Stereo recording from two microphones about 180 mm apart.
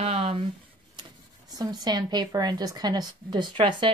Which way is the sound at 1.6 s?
20° right (ahead or behind).